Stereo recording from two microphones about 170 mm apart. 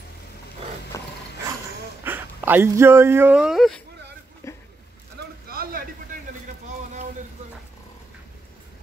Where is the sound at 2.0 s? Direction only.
10° right (ahead or behind).